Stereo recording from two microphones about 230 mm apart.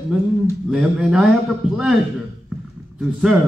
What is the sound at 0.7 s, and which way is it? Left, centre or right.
Speech, centre.